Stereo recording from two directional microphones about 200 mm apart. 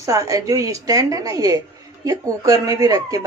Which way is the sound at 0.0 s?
15° right (ahead or behind).